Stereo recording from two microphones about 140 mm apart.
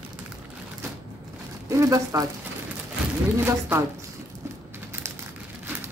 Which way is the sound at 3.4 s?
15° right (ahead or behind).